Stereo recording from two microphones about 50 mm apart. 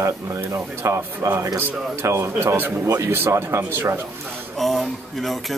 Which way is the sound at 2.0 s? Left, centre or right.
Right.